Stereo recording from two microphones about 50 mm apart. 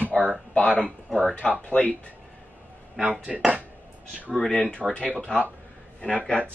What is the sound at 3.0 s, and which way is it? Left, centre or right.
Speech, right.